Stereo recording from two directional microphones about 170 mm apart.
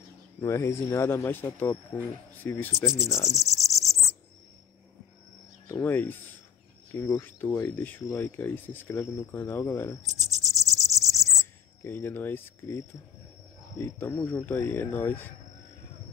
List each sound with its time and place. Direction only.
0.4 s speech: 15° left (ahead or behind)
3.3 s cricket: 20° right (ahead or behind)
5.7 s speech: 15° left (ahead or behind)
10.0 s cricket: 20° right (ahead or behind)
11.8 s speech: 15° left (ahead or behind)